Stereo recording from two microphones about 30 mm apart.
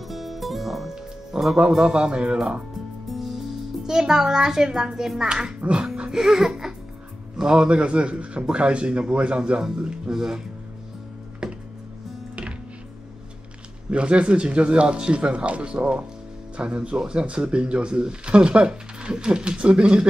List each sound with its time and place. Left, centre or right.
0.1 s music: centre
1.3 s a man's voice: right
3.2 s music: centre
3.9 s a woman's voice: centre
5.6 s speech: right
6.1 s a woman's voice: centre
7.3 s a man's voice: right
10.1 s speech: right
11.4 s music: right
13.8 s a man's voice: right